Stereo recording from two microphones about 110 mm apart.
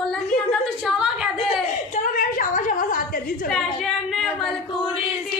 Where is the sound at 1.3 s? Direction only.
60° left (ahead or behind).